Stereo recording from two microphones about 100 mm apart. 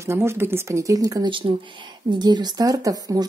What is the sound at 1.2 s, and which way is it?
Speech, 60° right (ahead or behind).